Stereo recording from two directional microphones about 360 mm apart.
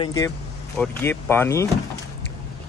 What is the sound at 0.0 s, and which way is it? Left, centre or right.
Speech, centre.